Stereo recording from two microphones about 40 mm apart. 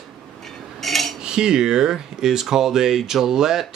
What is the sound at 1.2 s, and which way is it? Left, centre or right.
Speech, centre.